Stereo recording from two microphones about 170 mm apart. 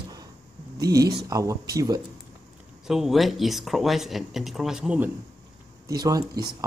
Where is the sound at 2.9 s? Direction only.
Centre (ahead or behind).